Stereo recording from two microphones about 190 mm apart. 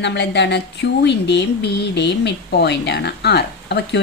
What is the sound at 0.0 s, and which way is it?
Speech, 65° left (ahead or behind).